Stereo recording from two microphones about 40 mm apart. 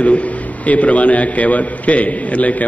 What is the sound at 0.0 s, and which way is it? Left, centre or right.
A man's voice, left.